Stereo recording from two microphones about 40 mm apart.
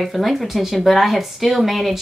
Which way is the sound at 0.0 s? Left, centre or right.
Centre.